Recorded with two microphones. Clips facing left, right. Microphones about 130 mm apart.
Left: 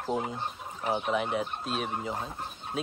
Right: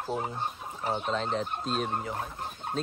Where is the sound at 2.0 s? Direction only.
20° left (ahead or behind).